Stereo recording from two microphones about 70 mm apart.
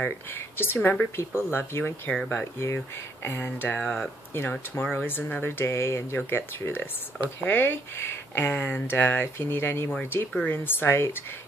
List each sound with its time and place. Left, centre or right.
0.0 s speech: left